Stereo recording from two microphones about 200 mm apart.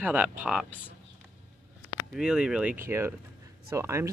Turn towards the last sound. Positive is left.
turn(degrees=-15)  # may be behind; listen again after turning